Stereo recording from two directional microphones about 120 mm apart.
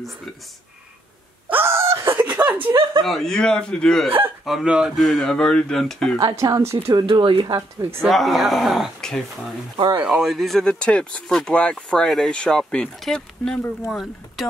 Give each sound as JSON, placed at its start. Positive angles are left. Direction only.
{"t": 1.5, "sound": "a sound", "side_deg": -20}
{"t": 2.2, "sound": "chuckle", "side_deg": -15}
{"t": 3.0, "sound": "speech", "side_deg": 0}
{"t": 4.5, "sound": "speech", "side_deg": -5}
{"t": 6.1, "sound": "speech", "side_deg": -30}
{"t": 6.9, "sound": "speech", "side_deg": -40}
{"t": 8.1, "sound": "speech", "side_deg": 0}
{"t": 9.8, "sound": "speech", "side_deg": -40}
{"t": 10.0, "sound": "speech", "side_deg": 0}